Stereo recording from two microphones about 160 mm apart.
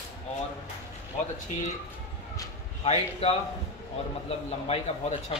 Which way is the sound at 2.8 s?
40° left (ahead or behind).